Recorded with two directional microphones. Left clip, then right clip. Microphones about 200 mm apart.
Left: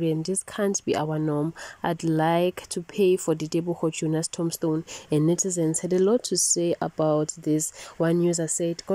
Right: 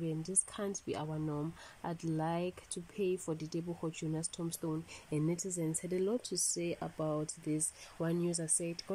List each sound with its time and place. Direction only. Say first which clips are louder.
0.0 s speech: left 13 dB; 45° left (ahead or behind)